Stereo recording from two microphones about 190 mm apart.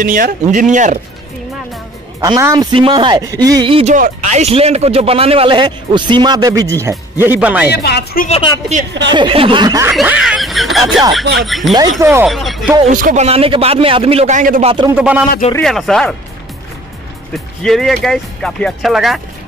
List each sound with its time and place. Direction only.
0.0 s speech: 45° right (ahead or behind)
2.1 s a man's voice: 20° right (ahead or behind)
7.7 s speech: 55° left (ahead or behind)
8.3 s speech: 25° left (ahead or behind)
9.1 s a man's voice: 25° right (ahead or behind)
9.9 s speech: 5° right (ahead or behind)
12.0 s speech: 10° right (ahead or behind)
12.3 s speech: centre (ahead or behind)
12.8 s a man's voice: 40° right (ahead or behind)
15.0 s speech: 5° right (ahead or behind)
17.3 s speech: centre (ahead or behind)